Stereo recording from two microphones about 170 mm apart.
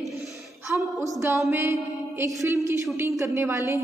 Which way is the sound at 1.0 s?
15° right (ahead or behind).